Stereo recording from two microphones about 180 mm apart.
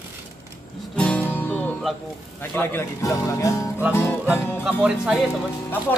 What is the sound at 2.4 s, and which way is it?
Speech, 10° left (ahead or behind).